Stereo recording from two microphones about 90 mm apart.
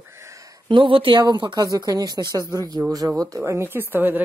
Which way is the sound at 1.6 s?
45° right (ahead or behind).